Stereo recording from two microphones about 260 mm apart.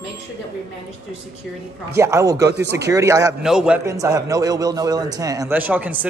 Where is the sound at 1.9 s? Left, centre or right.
Centre.